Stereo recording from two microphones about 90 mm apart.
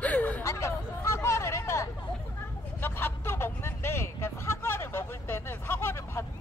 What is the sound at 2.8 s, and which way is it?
Vehicle, 25° left (ahead or behind).